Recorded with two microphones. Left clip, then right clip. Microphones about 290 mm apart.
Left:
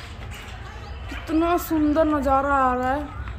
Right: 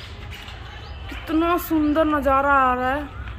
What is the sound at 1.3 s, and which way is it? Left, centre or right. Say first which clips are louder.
Speech: right 1 dB; centre.